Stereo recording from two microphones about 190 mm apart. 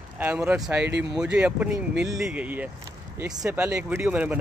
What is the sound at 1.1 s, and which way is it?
Speech, 5° right (ahead or behind).